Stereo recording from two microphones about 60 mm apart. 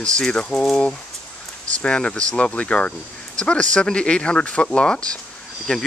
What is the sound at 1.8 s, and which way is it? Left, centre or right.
Speech, centre.